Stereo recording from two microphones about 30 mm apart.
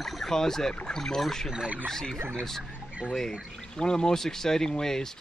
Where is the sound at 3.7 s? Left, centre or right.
Left.